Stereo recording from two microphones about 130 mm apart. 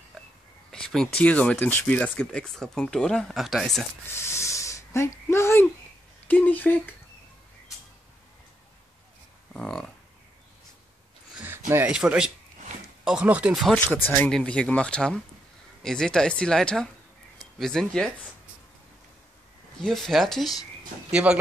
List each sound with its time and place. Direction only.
0.7 s speech: 5° left (ahead or behind)
4.1 s a sound: 20° left (ahead or behind)
6.2 s speech: 15° left (ahead or behind)
9.5 s speech: 5° left (ahead or behind)
11.3 s a sound: 15° right (ahead or behind)
11.7 s speech: 10° right (ahead or behind)
13.7 s speech: 15° left (ahead or behind)
19.8 s speech: centre (ahead or behind)